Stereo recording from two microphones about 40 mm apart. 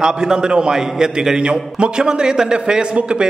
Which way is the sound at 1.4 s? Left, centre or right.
Right.